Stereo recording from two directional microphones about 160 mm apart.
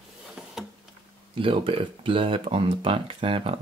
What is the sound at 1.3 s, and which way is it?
Speech, 35° right (ahead or behind).